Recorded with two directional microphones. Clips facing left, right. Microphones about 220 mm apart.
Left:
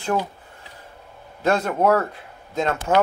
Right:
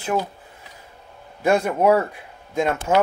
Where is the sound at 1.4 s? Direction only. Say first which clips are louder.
Right 1 dB; 15° right (ahead or behind).